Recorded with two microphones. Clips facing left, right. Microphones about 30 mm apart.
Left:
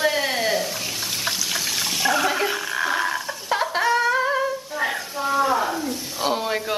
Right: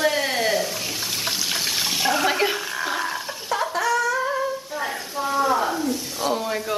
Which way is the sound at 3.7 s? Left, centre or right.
Left.